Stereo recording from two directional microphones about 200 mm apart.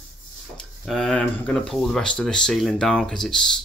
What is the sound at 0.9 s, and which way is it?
Speech, centre (ahead or behind).